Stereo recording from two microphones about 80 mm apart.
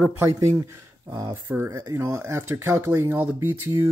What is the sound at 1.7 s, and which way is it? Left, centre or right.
Speech, right.